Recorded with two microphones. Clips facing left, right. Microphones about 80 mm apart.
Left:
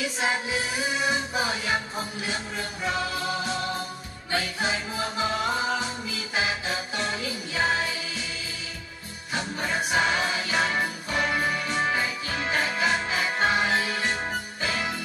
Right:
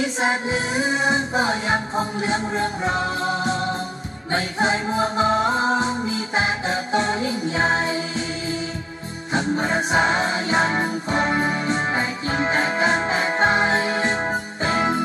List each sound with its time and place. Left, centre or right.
0.0 s music: right
9.3 s music: right